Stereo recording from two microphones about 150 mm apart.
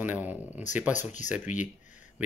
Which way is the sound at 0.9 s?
55° left (ahead or behind).